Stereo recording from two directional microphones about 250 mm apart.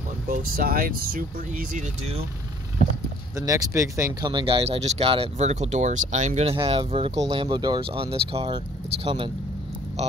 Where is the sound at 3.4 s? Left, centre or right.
Centre.